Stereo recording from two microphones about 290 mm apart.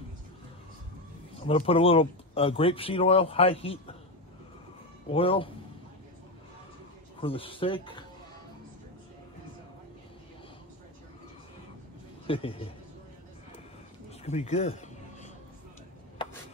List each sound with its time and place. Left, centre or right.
1.3 s speech: centre
5.1 s speech: centre
7.2 s speech: centre
12.3 s speech: centre
14.2 s a sound: left